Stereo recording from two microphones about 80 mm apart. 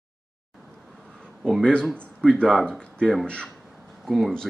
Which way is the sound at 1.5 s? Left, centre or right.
Centre.